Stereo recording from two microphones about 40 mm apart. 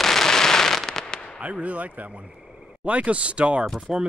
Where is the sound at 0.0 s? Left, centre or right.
Centre.